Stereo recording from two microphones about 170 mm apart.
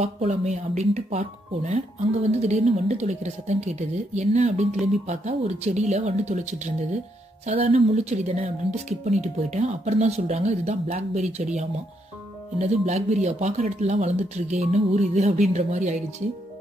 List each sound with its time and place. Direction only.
0.0 s speech: 40° right (ahead or behind)